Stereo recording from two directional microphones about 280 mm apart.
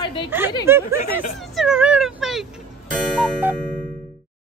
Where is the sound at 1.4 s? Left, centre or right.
Centre.